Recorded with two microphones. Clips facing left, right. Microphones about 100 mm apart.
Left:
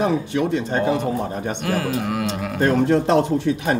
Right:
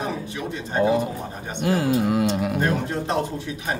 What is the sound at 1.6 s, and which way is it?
Speech, 25° right (ahead or behind).